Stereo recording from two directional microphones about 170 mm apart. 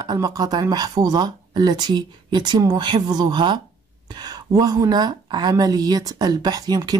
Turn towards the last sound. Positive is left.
turn(degrees=-25)  # may be behind; listen again after turning